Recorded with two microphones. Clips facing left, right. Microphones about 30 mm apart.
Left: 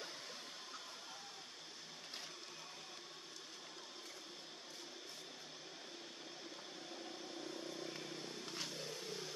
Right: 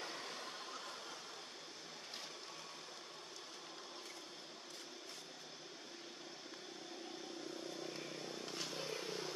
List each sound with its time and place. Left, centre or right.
7.5 s vehicle: centre
8.7 s wild animals: right